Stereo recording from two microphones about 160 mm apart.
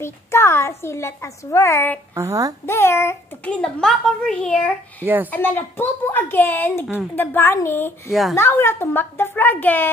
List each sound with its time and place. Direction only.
0.0 s a child's voice: 15° left (ahead or behind)
2.1 s a woman's voice: 20° right (ahead or behind)
2.6 s a child's voice: 15° left (ahead or behind)
5.0 s speech: 10° right (ahead or behind)
5.3 s a child's voice: 10° left (ahead or behind)
8.1 s speech: centre (ahead or behind)
8.4 s a child's voice: 15° left (ahead or behind)